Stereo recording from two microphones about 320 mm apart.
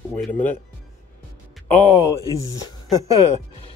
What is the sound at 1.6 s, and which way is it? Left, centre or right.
Speech, centre.